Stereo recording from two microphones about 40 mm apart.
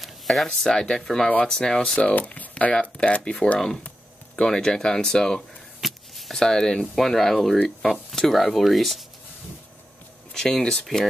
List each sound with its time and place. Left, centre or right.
0.0 s a sound: centre
0.7 s speech: centre
2.0 s speech: left
2.7 s speech: left
3.5 s speech: centre
5.8 s a sound: centre
6.3 s speech: centre
10.3 s speech: centre